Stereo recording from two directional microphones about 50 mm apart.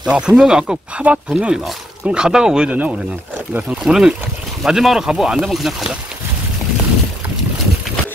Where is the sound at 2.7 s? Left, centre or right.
Right.